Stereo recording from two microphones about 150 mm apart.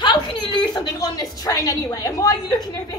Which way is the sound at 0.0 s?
30° left (ahead or behind).